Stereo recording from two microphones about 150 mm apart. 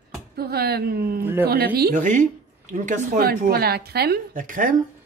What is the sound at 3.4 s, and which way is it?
A woman's voice, 90° right.